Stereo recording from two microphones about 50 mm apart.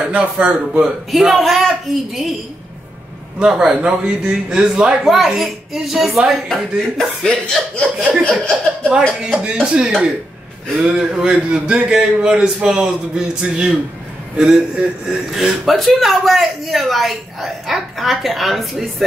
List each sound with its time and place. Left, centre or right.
0.0 s a man's voice: right
1.1 s a man's voice: centre
3.3 s a man's voice: centre
6.5 s speech: centre
9.2 s a man's voice: right; by 19.0 s centre